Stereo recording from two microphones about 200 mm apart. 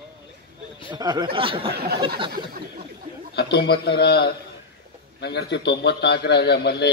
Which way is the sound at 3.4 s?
55° left (ahead or behind).